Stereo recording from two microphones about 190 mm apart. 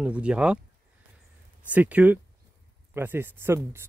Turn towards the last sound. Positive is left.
turn(degrees=-15)  # may be behind; listen again after turning